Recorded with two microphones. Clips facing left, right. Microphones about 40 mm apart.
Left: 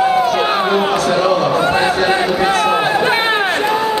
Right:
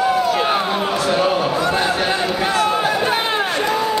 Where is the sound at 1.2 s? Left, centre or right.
Centre.